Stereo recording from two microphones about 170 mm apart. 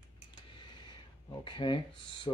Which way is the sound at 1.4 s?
30° left (ahead or behind).